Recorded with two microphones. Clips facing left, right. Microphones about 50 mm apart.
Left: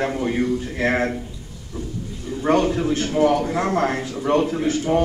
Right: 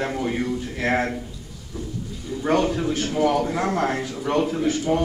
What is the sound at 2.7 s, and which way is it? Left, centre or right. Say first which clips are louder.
A man's voice: left 3 dB; centre.